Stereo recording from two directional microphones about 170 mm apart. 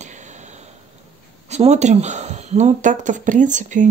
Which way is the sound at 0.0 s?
45° right (ahead or behind).